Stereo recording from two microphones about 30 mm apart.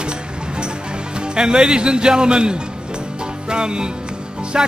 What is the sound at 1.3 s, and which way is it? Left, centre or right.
A man's voice, right.